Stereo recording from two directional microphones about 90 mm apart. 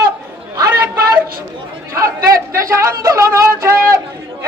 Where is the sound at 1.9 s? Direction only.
30° right (ahead or behind).